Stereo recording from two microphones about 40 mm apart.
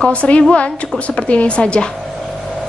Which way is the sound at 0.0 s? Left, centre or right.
Left.